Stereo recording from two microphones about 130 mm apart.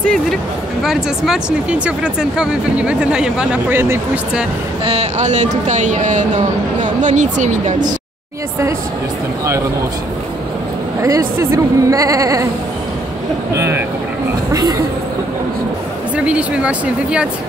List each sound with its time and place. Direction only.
0.8 s speech: 5° right (ahead or behind)
3.7 s speech: 15° right (ahead or behind)
4.8 s speech: 55° right (ahead or behind)
11.0 s a woman's voice: 25° right (ahead or behind)
13.5 s a woman's voice: 20° right (ahead or behind)
16.3 s speech: 10° right (ahead or behind)